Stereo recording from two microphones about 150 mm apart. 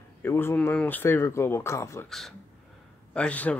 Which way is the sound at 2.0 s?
Centre (ahead or behind).